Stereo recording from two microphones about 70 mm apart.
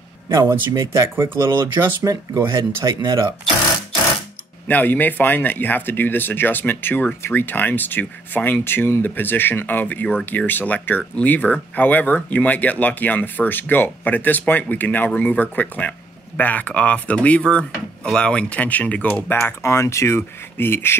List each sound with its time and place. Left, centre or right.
0.3 s speech: right
2.0 s speech: right
4.6 s speech: left
19.6 s speech: left